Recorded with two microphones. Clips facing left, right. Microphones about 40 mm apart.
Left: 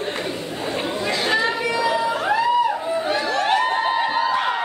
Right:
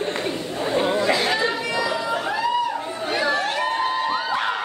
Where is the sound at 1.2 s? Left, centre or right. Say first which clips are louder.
Left 2 dB; centre.